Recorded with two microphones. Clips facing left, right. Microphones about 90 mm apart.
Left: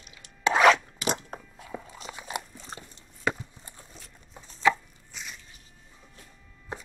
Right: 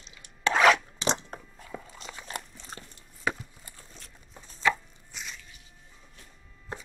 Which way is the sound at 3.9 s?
5° left (ahead or behind).